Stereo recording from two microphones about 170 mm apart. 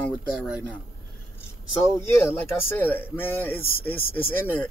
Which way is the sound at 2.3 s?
10° left (ahead or behind).